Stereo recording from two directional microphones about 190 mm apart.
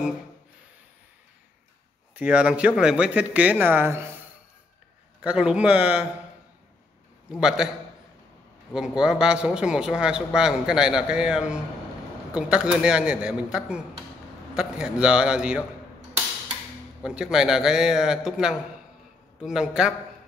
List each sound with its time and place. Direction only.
2.1 s speech: 5° right (ahead or behind)
5.2 s a man's voice: 5° right (ahead or behind)
7.2 s a man's voice: 5° right (ahead or behind)
8.7 s a man's voice: 5° right (ahead or behind)
17.0 s a man's voice: 5° right (ahead or behind)